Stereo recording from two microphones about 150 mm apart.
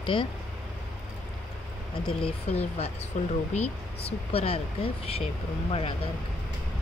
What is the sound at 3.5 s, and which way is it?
Speech, 40° left (ahead or behind).